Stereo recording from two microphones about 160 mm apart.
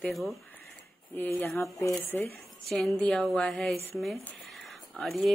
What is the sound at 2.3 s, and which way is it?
A woman's voice, centre (ahead or behind).